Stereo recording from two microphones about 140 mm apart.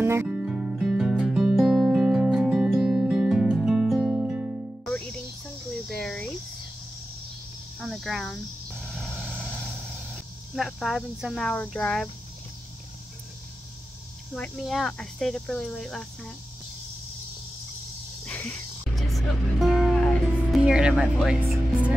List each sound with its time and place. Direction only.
0.0 s music: 20° right (ahead or behind)
0.3 s music: 5° right (ahead or behind)
4.8 s music: 10° left (ahead or behind)
5.9 s cricket: 5° left (ahead or behind)
7.8 s vehicle: centre (ahead or behind)
11.4 s speech: 10° left (ahead or behind)
14.3 s speech: 5° left (ahead or behind)
18.2 s a sound: 10° left (ahead or behind)
18.9 s music: centre (ahead or behind)
20.2 s speech: 5° right (ahead or behind)